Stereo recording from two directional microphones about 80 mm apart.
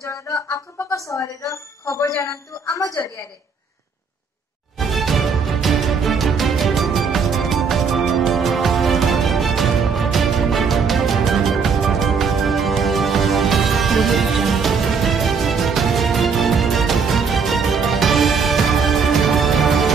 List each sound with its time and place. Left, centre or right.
0.0 s speech: left
4.7 s music: centre